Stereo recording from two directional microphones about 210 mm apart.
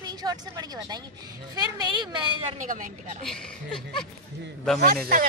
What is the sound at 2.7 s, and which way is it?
Speech, 40° right (ahead or behind).